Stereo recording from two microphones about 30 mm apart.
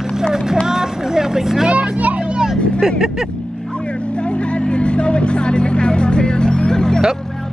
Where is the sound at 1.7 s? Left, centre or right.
Right.